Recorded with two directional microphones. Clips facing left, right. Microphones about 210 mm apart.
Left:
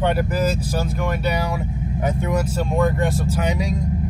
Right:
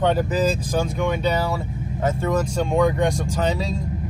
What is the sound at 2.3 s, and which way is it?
Speech, 5° left (ahead or behind).